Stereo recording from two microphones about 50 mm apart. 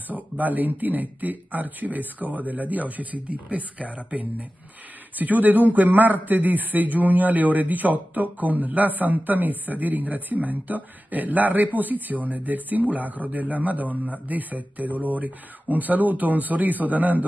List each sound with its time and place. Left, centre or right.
0.1 s a man's voice: right